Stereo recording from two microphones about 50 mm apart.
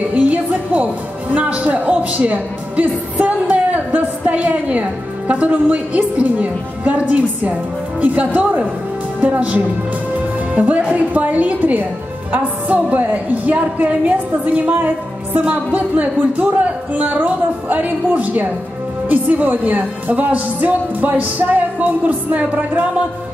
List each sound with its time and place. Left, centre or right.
0.1 s a woman's voice: right